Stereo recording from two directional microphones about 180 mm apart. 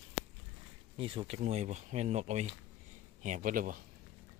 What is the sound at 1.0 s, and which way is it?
Speech, 30° right (ahead or behind).